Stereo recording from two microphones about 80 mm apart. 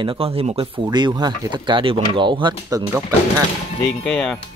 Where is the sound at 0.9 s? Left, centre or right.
Right.